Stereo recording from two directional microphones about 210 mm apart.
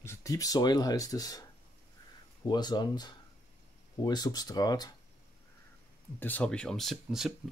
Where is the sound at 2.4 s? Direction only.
20° left (ahead or behind).